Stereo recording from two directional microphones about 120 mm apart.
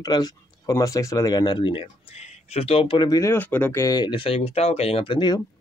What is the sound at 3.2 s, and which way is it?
Speech, 15° left (ahead or behind).